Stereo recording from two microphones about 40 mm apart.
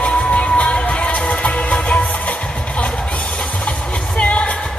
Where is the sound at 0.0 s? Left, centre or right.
Left.